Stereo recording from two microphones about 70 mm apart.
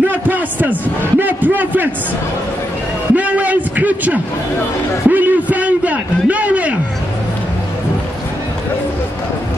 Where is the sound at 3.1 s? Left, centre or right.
Right.